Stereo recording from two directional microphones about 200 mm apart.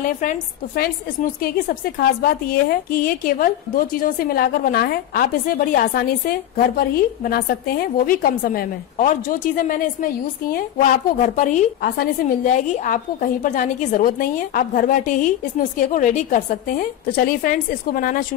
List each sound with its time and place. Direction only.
0.0 s a woman's voice: 40° left (ahead or behind)